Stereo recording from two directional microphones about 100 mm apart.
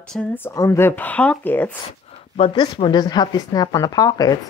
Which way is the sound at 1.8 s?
85° left.